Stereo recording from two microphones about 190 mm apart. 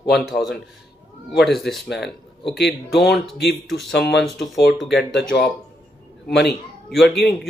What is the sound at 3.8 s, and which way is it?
Speech, 65° left (ahead or behind).